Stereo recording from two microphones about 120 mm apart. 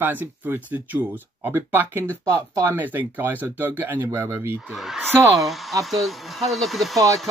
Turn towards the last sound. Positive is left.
turn(degrees=0)  # may be behind; listen again after turning